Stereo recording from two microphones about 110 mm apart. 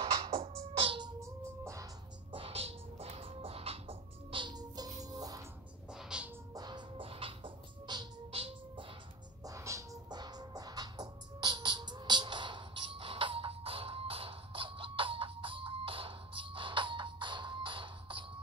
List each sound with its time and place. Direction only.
0.3 s music: 60° right (ahead or behind)
0.7 s music: 50° right (ahead or behind)
1.2 s music: 25° right (ahead or behind)
2.3 s music: 60° right (ahead or behind); by 5.4 s 35° right (ahead or behind)
5.9 s music: 5° right (ahead or behind)
6.5 s music: 40° right (ahead or behind)
7.0 s music: 55° right (ahead or behind)
8.3 s music: 60° right (ahead or behind)
9.4 s music: 30° right (ahead or behind); by 18.2 s 50° right (ahead or behind)